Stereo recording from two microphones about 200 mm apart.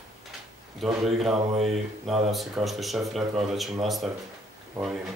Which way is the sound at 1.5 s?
30° right (ahead or behind).